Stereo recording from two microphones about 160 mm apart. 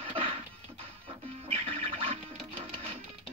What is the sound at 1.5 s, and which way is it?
Music, 35° right (ahead or behind).